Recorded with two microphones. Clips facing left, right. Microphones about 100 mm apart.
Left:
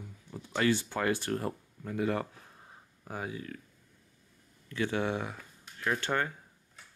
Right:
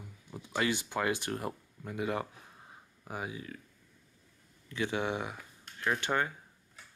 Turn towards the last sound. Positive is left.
turn(degrees=-15)  # may be behind; listen again after turning